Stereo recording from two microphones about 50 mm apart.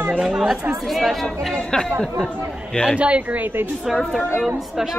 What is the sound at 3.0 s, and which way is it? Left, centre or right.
Speech, right.